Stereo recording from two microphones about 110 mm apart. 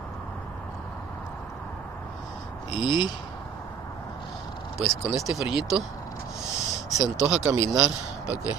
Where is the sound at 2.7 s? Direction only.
45° left (ahead or behind).